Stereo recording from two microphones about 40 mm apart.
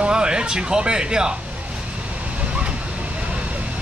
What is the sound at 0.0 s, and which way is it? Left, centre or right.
Speech, right.